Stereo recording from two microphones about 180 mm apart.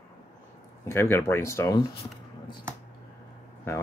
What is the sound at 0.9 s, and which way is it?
Speech, 15° left (ahead or behind).